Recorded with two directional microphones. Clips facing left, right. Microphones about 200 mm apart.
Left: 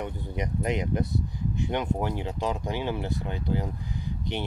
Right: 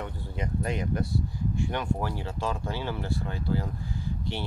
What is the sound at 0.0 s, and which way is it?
Speech, 20° left (ahead or behind).